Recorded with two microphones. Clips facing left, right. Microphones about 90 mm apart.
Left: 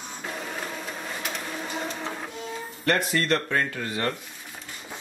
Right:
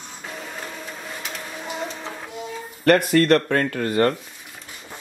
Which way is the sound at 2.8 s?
55° right (ahead or behind).